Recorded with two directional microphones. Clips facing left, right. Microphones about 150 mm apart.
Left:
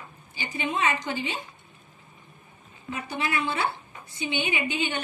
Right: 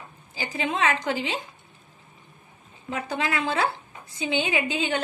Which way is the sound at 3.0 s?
90° right.